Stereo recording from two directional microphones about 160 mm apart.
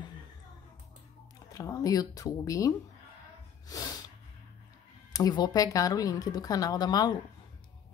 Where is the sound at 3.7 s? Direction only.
25° left (ahead or behind).